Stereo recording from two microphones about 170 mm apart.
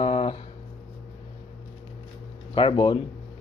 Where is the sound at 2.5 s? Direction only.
30° left (ahead or behind).